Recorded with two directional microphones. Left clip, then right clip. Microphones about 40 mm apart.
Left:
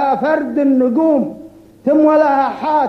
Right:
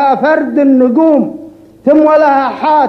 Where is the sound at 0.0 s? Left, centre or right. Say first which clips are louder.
Right 5 dB; right.